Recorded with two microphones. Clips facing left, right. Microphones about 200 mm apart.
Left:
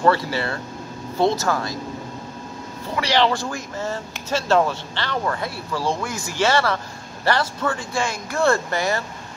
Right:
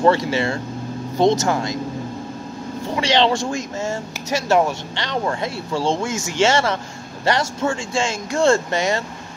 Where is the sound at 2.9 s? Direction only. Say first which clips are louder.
Right 2 dB; 25° right (ahead or behind).